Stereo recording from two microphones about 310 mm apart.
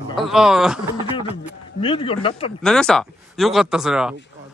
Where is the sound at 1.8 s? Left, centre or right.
Centre.